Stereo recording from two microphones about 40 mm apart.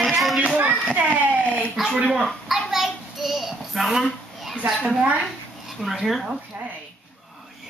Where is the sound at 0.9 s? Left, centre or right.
Right.